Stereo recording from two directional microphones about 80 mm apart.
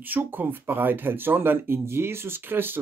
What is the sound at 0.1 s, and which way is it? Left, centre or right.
Speech, right.